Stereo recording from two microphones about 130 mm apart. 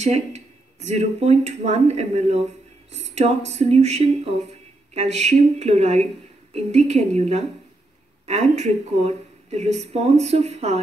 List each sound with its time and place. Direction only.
0.0 s speech: 60° right (ahead or behind)